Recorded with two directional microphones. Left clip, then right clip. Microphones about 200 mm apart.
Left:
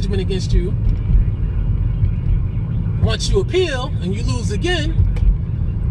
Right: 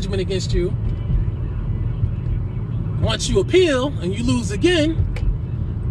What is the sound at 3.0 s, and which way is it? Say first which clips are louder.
Speech: even; 45° right (ahead or behind).